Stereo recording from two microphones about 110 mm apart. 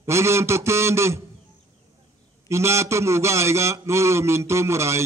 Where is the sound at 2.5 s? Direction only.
25° right (ahead or behind).